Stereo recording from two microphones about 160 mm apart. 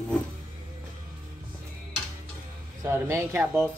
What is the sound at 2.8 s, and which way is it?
Speech, 15° right (ahead or behind).